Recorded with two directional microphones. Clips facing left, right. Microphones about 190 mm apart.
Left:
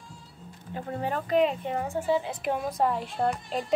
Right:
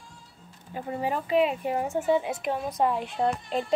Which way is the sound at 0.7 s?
10° right (ahead or behind).